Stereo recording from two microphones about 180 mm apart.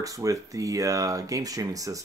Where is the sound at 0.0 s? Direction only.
20° right (ahead or behind).